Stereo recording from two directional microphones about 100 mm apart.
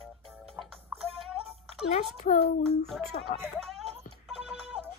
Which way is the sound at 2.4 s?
80° left.